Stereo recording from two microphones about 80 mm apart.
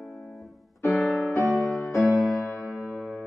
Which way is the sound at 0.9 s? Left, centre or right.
Centre.